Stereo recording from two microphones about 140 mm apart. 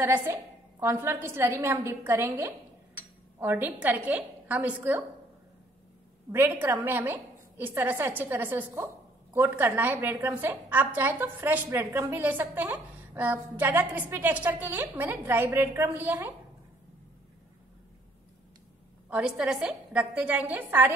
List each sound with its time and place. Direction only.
0.0 s a woman's voice: 20° right (ahead or behind)
6.3 s a woman's voice: 15° right (ahead or behind)
19.0 s a woman's voice: 5° right (ahead or behind)